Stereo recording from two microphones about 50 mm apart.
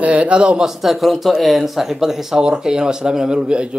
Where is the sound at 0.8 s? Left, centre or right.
Centre.